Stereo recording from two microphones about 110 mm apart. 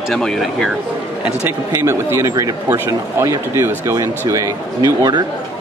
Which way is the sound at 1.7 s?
25° right (ahead or behind).